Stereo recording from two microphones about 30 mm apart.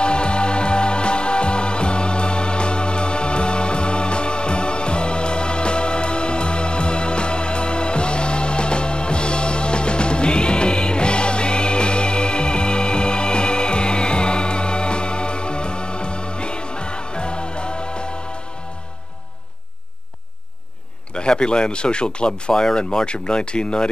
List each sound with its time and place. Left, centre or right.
0.0 s music: left
21.1 s speech: left
22.5 s speech: centre
22.8 s speech: left